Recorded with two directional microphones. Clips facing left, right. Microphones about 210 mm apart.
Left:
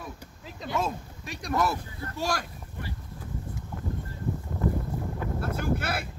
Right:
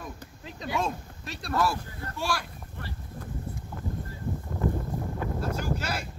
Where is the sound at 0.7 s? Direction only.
10° left (ahead or behind).